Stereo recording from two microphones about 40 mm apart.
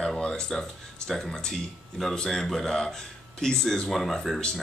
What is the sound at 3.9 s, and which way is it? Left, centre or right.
Speech, centre.